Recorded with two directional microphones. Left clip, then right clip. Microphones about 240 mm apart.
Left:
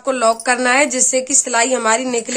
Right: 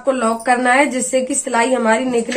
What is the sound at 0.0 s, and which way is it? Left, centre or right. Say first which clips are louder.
A woman's voice: left 1 dB; left.